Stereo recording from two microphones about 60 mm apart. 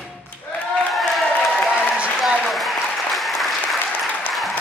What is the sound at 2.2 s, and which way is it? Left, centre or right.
Applause, centre.